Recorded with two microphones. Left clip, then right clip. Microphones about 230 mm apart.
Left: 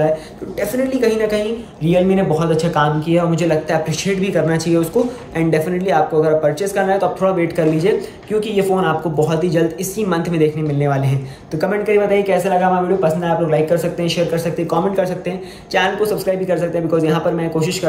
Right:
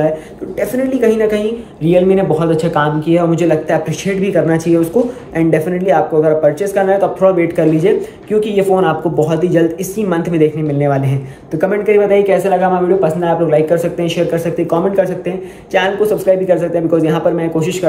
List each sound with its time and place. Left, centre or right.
0.6 s speech: centre
1.9 s speech: centre